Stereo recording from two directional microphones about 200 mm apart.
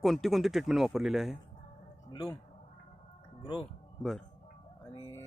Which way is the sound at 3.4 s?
25° left (ahead or behind).